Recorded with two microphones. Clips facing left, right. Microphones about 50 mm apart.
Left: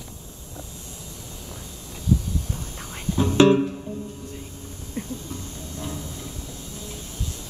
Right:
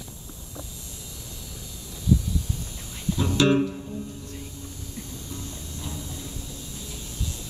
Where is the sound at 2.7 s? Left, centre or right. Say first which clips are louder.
Left 4 dB; left.